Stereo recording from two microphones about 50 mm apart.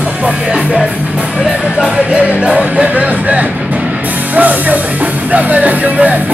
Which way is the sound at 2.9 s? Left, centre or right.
Right.